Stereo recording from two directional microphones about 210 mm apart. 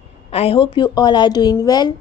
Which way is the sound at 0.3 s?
25° left (ahead or behind).